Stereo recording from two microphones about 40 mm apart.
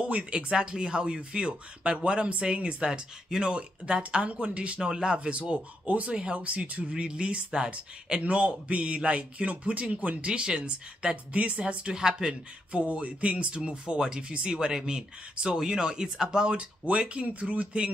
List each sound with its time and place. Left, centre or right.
0.0 s speech: right
2.9 s speech: centre
4.7 s speech: centre
8.2 s a man's voice: right
11.3 s a man's voice: right
11.6 s speech: right
12.7 s speech: right